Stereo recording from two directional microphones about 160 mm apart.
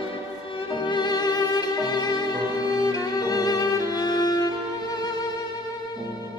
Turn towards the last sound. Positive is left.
turn(degrees=25)  # may be behind; listen again after turning